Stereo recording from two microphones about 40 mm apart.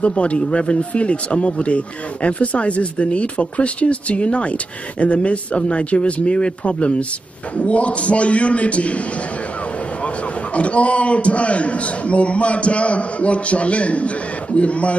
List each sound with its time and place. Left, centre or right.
0.0 s speech: left
10.0 s speech: left